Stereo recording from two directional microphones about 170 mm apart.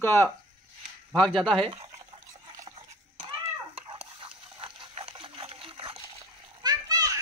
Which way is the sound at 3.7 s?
35° right (ahead or behind).